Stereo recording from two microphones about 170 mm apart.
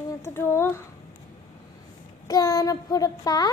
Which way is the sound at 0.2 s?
15° left (ahead or behind).